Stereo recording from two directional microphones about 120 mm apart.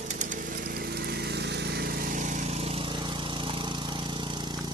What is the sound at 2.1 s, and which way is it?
Lawn mower, 90° right.